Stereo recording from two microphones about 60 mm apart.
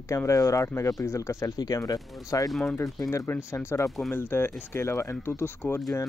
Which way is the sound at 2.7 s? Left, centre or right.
Left.